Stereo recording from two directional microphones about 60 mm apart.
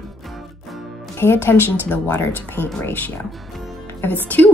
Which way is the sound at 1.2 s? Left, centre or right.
Left.